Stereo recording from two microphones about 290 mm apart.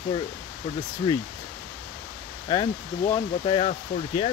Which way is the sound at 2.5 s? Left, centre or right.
Centre.